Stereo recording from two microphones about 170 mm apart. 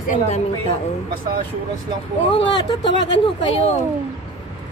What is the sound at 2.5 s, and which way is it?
Speech, 25° left (ahead or behind).